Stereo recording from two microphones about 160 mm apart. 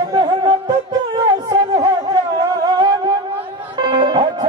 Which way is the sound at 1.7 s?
25° right (ahead or behind).